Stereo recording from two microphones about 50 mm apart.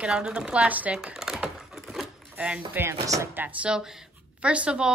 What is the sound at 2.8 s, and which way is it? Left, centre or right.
Chopping, right.